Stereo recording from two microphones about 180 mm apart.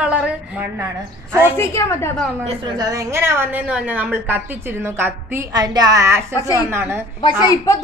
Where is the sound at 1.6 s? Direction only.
15° left (ahead or behind).